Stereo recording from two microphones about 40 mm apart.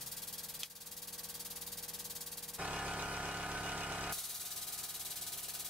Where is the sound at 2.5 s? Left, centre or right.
Centre.